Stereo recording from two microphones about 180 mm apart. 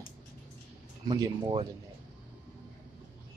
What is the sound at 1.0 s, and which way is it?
Speech, 25° right (ahead or behind).